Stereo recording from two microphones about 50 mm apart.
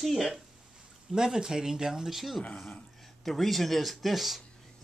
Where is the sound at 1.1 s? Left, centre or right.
Centre.